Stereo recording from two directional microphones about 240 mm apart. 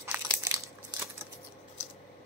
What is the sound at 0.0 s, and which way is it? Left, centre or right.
Crumpling, centre.